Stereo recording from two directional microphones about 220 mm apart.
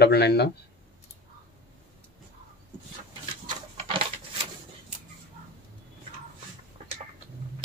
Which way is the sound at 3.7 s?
25° right (ahead or behind).